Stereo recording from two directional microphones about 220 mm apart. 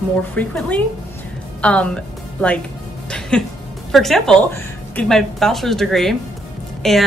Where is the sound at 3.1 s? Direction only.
5° left (ahead or behind).